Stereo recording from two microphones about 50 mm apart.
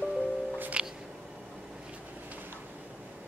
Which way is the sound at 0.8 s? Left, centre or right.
Right.